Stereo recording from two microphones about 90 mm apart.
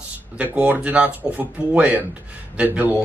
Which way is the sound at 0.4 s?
15° right (ahead or behind).